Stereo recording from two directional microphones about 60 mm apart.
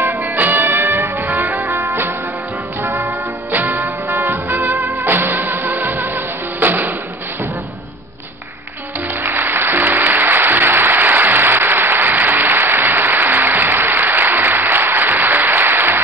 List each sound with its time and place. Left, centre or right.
0.0 s music: right
9.2 s music: right